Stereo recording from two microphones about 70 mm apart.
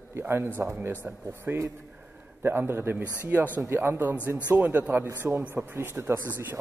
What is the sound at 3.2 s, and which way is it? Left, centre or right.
Speech, right.